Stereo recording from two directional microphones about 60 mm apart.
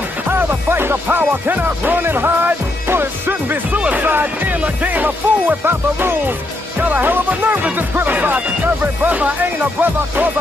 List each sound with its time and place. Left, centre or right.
0.3 s music: right
3.7 s speech: right